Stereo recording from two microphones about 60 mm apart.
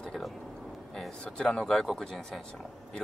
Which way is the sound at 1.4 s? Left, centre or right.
Centre.